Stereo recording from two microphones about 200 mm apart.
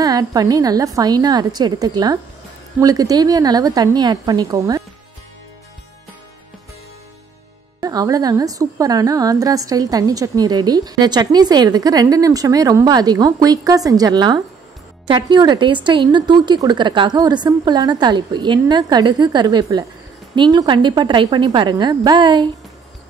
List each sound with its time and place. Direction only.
0.0 s a woman's voice: 20° right (ahead or behind)
7.8 s a woman's voice: 20° right (ahead or behind)